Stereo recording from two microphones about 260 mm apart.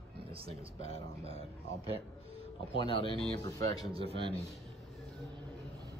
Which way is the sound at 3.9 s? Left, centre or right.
Right.